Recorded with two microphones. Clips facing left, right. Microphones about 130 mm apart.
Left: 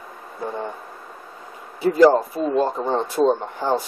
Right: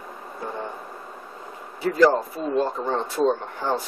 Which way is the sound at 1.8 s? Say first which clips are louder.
Left 4 dB; 20° left (ahead or behind).